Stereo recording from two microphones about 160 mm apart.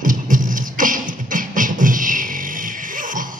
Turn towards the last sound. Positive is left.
turn(degrees=-55)  # may be behind; listen again after turning